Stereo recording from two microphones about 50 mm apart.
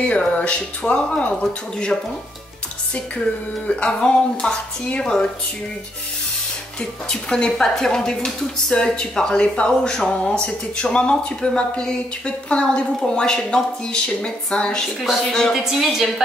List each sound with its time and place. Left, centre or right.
0.0 s a woman's voice: left
2.9 s a woman's voice: left
6.8 s a woman's voice: centre
15.0 s a woman's voice: centre